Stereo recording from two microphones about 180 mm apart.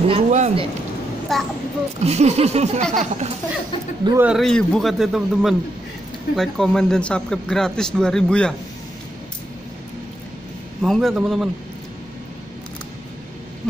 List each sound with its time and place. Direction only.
0.1 s speech: 35° right (ahead or behind)
1.3 s a man's voice: centre (ahead or behind)
2.0 s speech: 35° right (ahead or behind)
4.0 s speech: 15° right (ahead or behind)
4.3 s a man's voice: centre (ahead or behind)
10.8 s a man's voice: centre (ahead or behind)